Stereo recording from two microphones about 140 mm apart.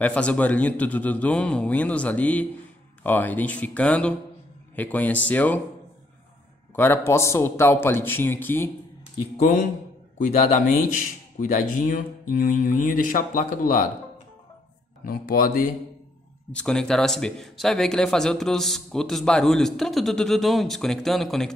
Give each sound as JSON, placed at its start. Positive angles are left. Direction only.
{"t": 0.0, "sound": "a man's voice", "side_deg": 10}
{"t": 6.7, "sound": "a man's voice", "side_deg": 15}
{"t": 10.1, "sound": "speech", "side_deg": 55}
{"t": 11.9, "sound": "speech", "side_deg": 80}
{"t": 15.0, "sound": "speech", "side_deg": 90}
{"t": 16.5, "sound": "a man's voice", "side_deg": 5}